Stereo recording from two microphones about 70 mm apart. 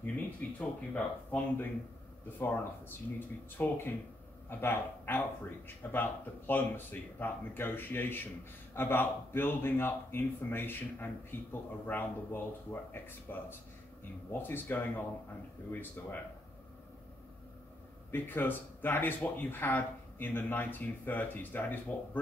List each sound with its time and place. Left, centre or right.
0.0 s a man's voice: centre
18.1 s speech: left